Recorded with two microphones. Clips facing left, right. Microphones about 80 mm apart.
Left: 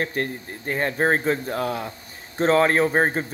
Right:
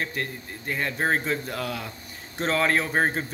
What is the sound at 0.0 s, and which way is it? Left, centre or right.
Speech, left.